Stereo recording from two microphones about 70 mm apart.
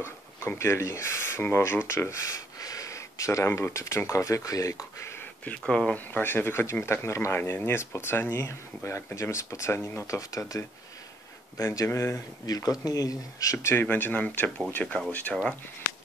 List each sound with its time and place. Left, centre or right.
0.0 s speech: left
5.6 s speech: centre
5.9 s speech: left
9.8 s speech: left
10.0 s speech: left
11.5 s speech: left
12.4 s speech: left
13.8 s speech: left